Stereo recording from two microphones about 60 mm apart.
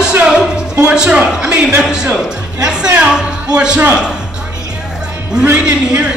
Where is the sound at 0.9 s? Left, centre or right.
Centre.